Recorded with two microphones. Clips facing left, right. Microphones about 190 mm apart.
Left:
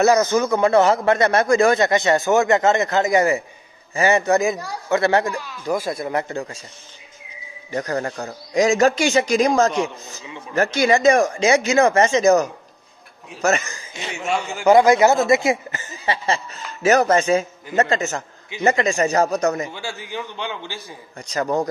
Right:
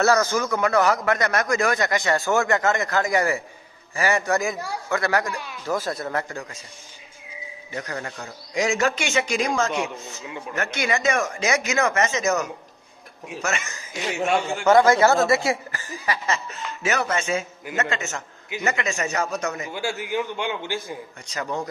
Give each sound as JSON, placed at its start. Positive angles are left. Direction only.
{"t": 0.0, "sound": "a man's voice", "side_deg": 20}
{"t": 7.7, "sound": "a man's voice", "side_deg": 40}
{"t": 14.1, "sound": "a man's voice", "side_deg": 0}
{"t": 14.7, "sound": "speech", "side_deg": 15}
{"t": 16.8, "sound": "a man's voice", "side_deg": 40}
{"t": 19.7, "sound": "a man's voice", "side_deg": -10}
{"t": 21.3, "sound": "a man's voice", "side_deg": 40}